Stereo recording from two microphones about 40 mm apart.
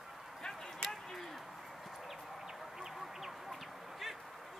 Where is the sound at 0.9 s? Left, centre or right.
Centre.